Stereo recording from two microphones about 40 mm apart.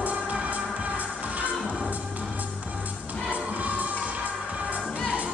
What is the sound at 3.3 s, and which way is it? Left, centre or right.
Music, right.